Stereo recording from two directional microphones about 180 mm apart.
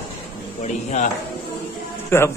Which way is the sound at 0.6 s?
40° left (ahead or behind).